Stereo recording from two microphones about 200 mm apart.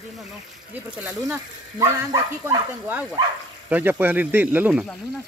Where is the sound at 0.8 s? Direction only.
10° right (ahead or behind).